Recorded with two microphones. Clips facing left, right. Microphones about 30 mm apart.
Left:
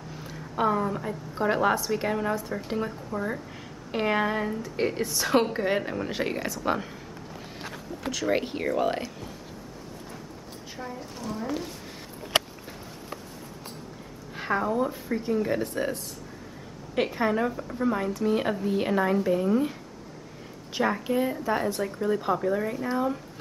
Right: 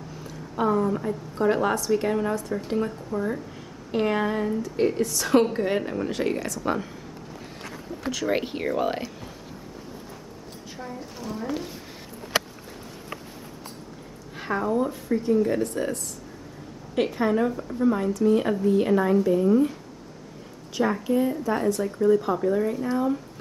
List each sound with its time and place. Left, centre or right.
0.1 s a sound: centre
0.9 s a woman's voice: centre
8.1 s speech: centre
10.8 s speech: centre
14.3 s a woman's voice: centre
20.7 s a woman's voice: centre